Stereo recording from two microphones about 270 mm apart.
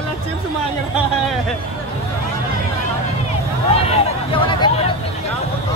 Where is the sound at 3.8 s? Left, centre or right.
Left.